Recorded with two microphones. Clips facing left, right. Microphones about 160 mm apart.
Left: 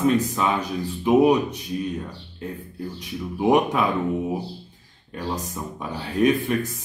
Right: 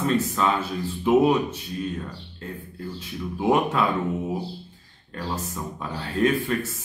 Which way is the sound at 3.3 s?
15° left (ahead or behind).